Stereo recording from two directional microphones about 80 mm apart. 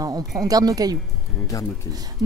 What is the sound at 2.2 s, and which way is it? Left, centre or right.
Speech, right.